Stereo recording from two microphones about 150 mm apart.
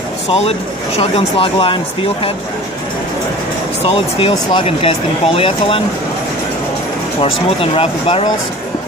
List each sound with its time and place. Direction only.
0.3 s speech: 40° left (ahead or behind)
3.9 s speech: 40° left (ahead or behind)
7.2 s speech: 40° left (ahead or behind)